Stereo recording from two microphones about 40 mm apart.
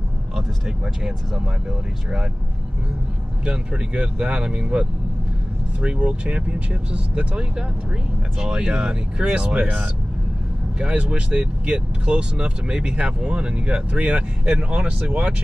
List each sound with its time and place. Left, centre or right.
0.7 s speech: centre
3.4 s speech: right
10.8 s speech: right